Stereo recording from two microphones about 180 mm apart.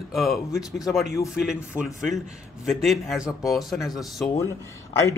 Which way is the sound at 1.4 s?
Centre (ahead or behind).